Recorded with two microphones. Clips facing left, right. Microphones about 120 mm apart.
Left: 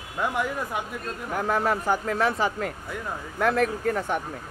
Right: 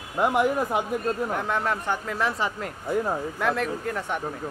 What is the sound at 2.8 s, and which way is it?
Speech, 35° right (ahead or behind).